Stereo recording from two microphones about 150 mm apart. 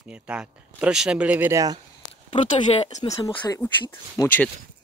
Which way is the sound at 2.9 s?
25° left (ahead or behind).